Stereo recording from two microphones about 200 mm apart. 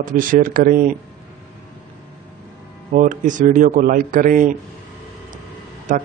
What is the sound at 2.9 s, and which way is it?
A man's voice, 40° right (ahead or behind).